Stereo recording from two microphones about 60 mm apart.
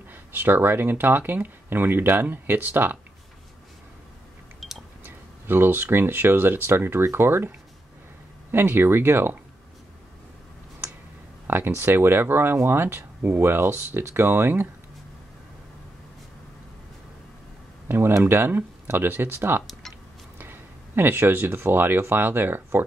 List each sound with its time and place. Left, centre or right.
0.1 s speech: right
4.6 s a sound: centre
5.0 s speech: right
11.4 s speech: right
17.8 s speech: right
19.6 s a sound: centre
20.3 s speech: right